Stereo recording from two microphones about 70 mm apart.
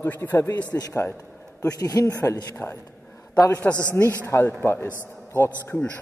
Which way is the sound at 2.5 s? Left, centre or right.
Left.